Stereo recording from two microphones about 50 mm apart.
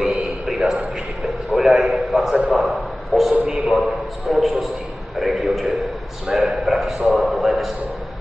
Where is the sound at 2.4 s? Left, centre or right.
Right.